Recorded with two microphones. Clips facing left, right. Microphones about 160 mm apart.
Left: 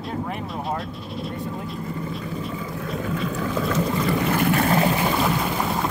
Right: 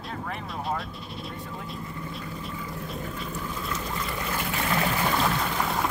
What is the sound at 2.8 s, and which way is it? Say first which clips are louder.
Boat: left 11 dB; 90° left.